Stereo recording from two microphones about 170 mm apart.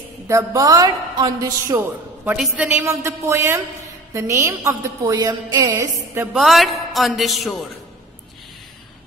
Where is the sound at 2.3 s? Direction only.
5° right (ahead or behind).